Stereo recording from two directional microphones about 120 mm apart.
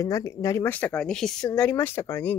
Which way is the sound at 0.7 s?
10° left (ahead or behind).